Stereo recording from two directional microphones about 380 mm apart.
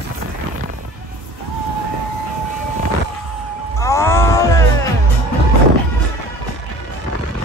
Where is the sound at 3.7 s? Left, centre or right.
Centre.